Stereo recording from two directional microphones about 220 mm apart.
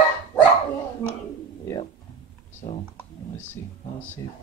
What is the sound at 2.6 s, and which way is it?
Speech, 30° left (ahead or behind).